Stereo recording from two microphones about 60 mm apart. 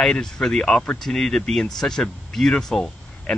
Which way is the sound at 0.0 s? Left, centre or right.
Centre.